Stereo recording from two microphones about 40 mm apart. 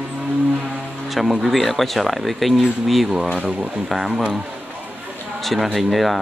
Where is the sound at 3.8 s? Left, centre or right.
Centre.